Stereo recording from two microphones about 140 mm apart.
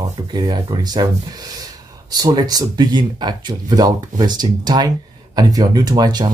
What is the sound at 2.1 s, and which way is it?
Speech, 25° right (ahead or behind).